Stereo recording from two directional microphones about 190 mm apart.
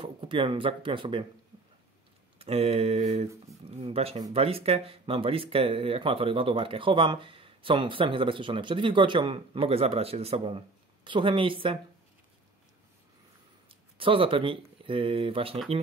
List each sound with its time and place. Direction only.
0.0 s speech: 25° right (ahead or behind)
2.3 s a sound: 30° right (ahead or behind)
4.2 s speech: 30° right (ahead or behind)
13.7 s speech: 30° right (ahead or behind)